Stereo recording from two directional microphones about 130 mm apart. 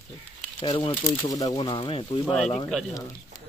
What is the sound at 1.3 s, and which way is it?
Speech, 30° left (ahead or behind).